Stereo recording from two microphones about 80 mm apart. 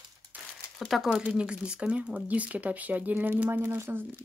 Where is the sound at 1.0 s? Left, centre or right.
Centre.